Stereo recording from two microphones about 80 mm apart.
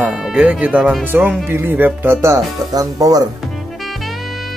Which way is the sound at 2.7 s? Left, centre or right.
Right.